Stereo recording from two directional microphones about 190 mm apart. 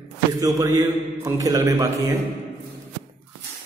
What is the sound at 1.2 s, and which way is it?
Speech, 15° right (ahead or behind).